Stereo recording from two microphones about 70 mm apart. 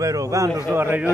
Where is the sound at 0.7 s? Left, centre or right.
Right.